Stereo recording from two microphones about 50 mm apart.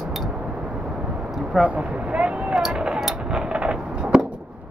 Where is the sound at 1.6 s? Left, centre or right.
Right.